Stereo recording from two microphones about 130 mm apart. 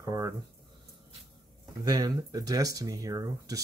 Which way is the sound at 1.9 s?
30° right (ahead or behind).